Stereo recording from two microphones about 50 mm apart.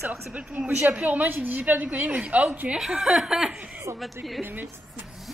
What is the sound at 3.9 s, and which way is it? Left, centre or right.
Speech, right.